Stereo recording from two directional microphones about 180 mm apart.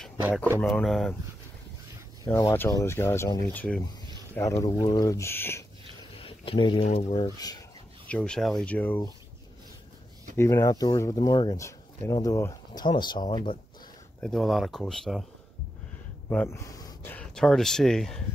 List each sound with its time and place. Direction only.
0.6 s speech: 5° left (ahead or behind)
2.2 s speech: 20° left (ahead or behind)
6.2 s a sound: 30° left (ahead or behind)
6.8 s speech: 40° left (ahead or behind)
7.2 s speech: 20° left (ahead or behind)
8.1 s speech: 5° left (ahead or behind)
10.3 s speech: 15° left (ahead or behind)
14.2 s speech: centre (ahead or behind)
16.3 s speech: 10° left (ahead or behind)